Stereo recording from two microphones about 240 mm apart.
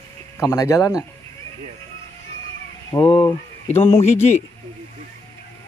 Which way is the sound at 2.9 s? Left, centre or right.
Left.